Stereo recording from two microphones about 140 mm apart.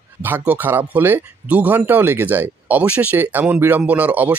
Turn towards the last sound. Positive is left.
turn(degrees=-10)  # may be behind; listen again after turning